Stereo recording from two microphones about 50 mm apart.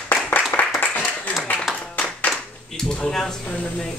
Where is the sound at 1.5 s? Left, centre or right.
Left.